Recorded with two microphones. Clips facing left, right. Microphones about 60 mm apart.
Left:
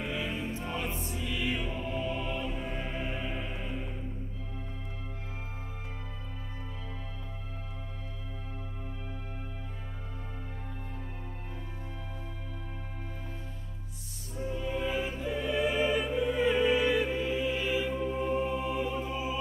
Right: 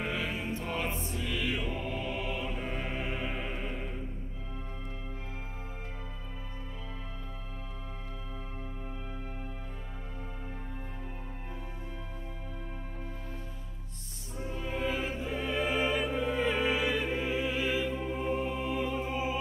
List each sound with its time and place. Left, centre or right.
0.1 s music: centre
0.6 s music: centre
1.7 s mantra: centre
2.1 s music: centre
14.3 s music: centre
17.1 s music: centre
17.5 s music: centre
17.7 s music: centre
18.0 s music: centre
18.4 s music: centre
18.9 s music: right